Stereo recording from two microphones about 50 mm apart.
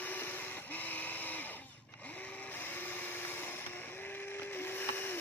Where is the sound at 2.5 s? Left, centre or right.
Left.